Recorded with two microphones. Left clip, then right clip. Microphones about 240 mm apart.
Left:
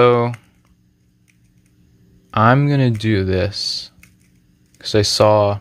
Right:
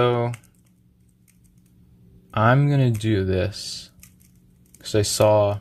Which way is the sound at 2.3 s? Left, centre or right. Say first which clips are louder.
Left 5 dB; centre.